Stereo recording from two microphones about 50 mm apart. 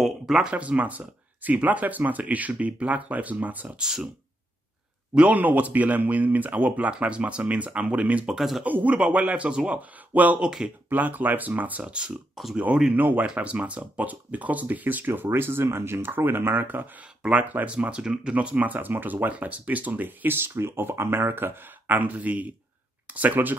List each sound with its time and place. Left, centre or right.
0.0 s a sound: centre
0.5 s speech: right
3.8 s speech: centre
5.3 s speech: right
8.3 s speech: centre
8.6 s speech: right
9.8 s speech: right
12.4 s speech: centre
12.9 s speech: right
13.2 s speech: right
15.3 s speech: right
17.2 s speech: right
18.3 s speech: right